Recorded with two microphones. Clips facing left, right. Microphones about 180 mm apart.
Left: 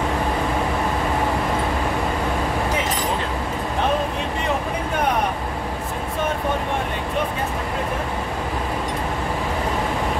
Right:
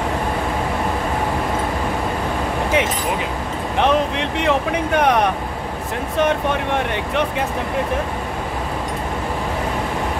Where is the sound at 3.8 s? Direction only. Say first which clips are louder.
Right 5 dB; 80° right.